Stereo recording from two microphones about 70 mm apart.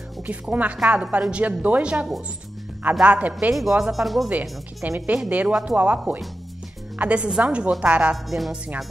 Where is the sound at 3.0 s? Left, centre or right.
Right.